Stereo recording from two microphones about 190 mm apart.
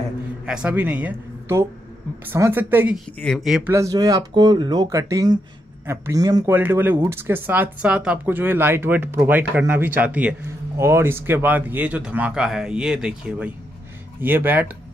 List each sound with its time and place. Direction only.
0.5 s speech: 5° right (ahead or behind)
3.2 s speech: centre (ahead or behind)
3.7 s speech: 20° right (ahead or behind)